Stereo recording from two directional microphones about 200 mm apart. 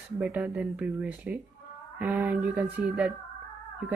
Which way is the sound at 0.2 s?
5° right (ahead or behind).